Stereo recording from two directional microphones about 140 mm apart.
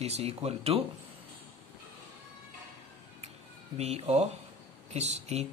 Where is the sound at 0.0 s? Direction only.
45° right (ahead or behind).